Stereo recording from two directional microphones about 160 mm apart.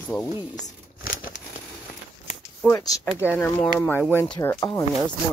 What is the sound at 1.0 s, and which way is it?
Crumpling, 60° left (ahead or behind).